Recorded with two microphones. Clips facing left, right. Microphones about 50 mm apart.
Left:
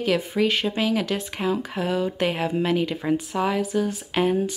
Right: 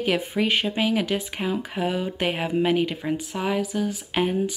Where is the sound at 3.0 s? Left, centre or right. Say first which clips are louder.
Left 3 dB; centre.